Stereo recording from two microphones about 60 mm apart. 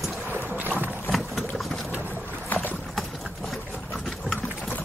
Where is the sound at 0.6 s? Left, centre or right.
Right.